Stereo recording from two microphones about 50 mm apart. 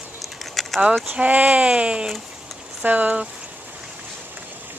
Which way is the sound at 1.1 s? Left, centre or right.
Right.